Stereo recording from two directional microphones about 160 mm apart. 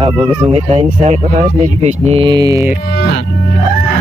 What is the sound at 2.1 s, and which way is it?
Speech, 30° right (ahead or behind).